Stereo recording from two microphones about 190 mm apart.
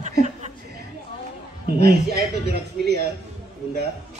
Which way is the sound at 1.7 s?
55° right (ahead or behind).